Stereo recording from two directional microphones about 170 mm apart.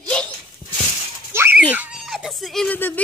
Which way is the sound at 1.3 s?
15° right (ahead or behind).